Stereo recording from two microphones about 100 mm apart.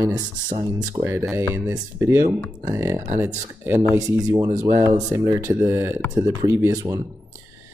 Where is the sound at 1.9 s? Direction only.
25° right (ahead or behind).